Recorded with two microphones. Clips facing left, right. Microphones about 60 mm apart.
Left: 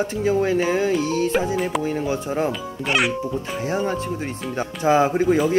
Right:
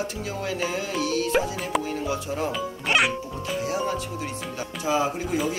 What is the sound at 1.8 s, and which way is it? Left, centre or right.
Speech, left.